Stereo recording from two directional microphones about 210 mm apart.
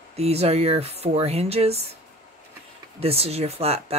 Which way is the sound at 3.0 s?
30° right (ahead or behind).